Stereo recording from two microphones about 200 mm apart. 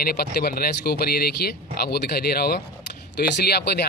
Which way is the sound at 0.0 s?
50° left (ahead or behind).